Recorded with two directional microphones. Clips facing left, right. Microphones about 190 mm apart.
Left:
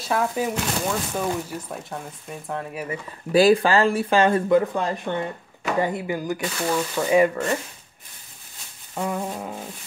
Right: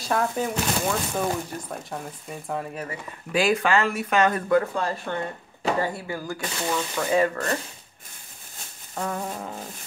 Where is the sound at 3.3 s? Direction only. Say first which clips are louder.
Left 5 dB; 35° left (ahead or behind); by 7.5 s 10° left (ahead or behind).